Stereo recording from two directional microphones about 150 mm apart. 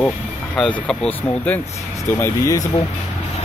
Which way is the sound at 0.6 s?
5° left (ahead or behind).